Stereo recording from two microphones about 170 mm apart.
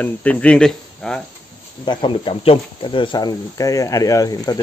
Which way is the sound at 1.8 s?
30° left (ahead or behind).